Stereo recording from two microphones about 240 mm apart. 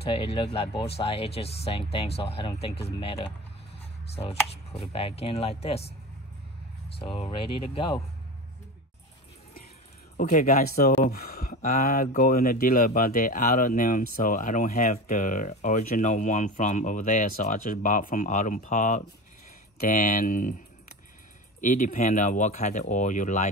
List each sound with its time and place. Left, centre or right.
0.0 s speech: left
7.0 s speech: left
10.1 s speech: left
21.5 s speech: left